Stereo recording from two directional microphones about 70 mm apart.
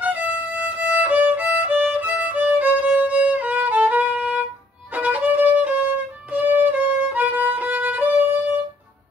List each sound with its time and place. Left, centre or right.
0.0 s violin: right